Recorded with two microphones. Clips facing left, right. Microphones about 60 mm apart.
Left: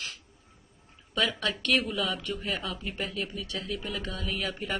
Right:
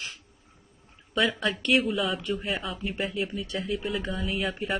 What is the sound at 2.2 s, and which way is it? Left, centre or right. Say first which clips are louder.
Speech: right 4 dB; right.